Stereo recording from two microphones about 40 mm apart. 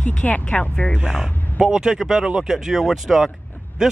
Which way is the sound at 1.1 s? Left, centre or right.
Centre.